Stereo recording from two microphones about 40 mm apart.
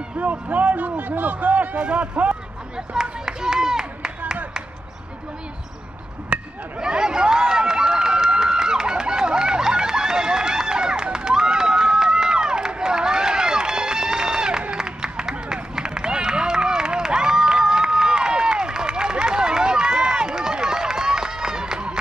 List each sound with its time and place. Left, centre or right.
0.2 s a man's voice: right
1.8 s speech: right
2.9 s run: centre
6.3 s a sound: right
6.8 s run: centre